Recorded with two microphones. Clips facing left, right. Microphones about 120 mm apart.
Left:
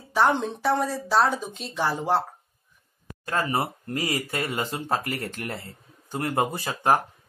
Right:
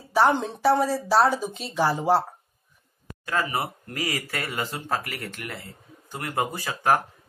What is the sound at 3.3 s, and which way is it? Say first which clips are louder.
Speech: left 1 dB; 30° left (ahead or behind).